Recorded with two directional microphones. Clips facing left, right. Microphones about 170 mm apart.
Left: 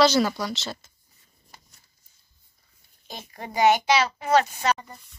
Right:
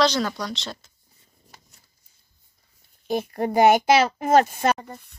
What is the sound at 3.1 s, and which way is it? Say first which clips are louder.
A child's voice: right 14 dB; 55° right (ahead or behind).